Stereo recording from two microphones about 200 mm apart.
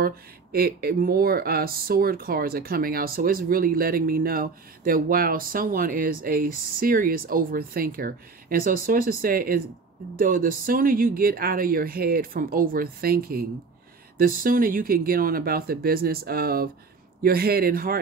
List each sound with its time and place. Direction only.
0.0 s speech: 50° right (ahead or behind)